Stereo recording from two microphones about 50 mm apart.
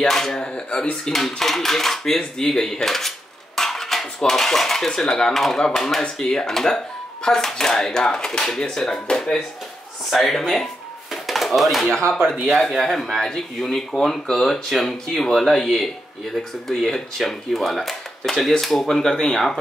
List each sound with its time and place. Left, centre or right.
0.0 s speech: centre
3.5 s cutlery: centre
6.1 s speech: centre
10.1 s speech: centre
11.2 s a sound: centre
12.4 s speech: centre